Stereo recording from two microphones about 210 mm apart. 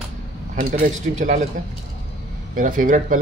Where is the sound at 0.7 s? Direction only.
35° right (ahead or behind).